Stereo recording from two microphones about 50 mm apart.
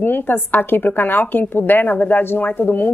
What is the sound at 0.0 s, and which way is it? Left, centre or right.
A woman's voice, left.